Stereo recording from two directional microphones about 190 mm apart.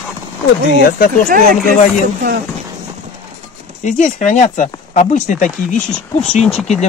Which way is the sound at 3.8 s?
40° left (ahead or behind).